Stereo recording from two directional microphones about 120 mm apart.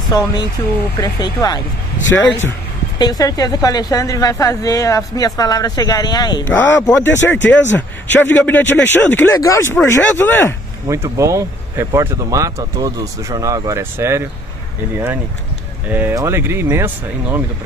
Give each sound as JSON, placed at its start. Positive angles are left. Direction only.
{"t": 0.1, "sound": "a woman's voice", "side_deg": 30}
{"t": 3.0, "sound": "a woman's voice", "side_deg": 30}
{"t": 6.5, "sound": "a man's voice", "side_deg": 15}
{"t": 10.9, "sound": "speech", "side_deg": -25}
{"t": 15.9, "sound": "speech", "side_deg": -15}